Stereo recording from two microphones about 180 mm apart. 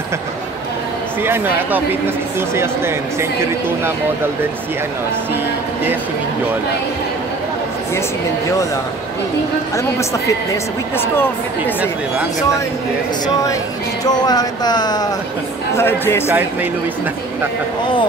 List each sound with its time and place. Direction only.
1.2 s speech: 10° right (ahead or behind)
9.8 s a woman's voice: 15° left (ahead or behind)
11.6 s speech: 10° right (ahead or behind)
14.0 s a woman's voice: 20° left (ahead or behind)